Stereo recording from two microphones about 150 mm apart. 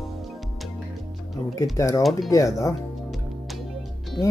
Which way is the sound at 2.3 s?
20° left (ahead or behind).